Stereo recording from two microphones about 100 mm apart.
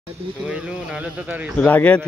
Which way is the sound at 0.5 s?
10° right (ahead or behind).